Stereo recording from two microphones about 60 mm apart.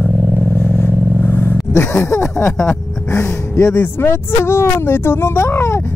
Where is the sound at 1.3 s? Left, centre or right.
Left.